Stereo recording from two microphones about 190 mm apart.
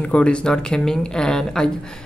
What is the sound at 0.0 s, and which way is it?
Speech, 5° left (ahead or behind).